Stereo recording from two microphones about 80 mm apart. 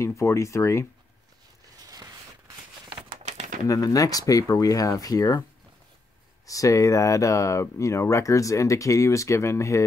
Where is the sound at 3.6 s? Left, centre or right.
Left.